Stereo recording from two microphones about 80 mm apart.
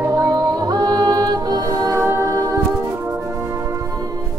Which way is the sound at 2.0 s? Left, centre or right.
Right.